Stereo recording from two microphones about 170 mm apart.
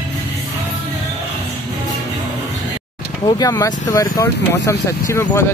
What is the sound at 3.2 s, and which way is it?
Speech, 20° left (ahead or behind).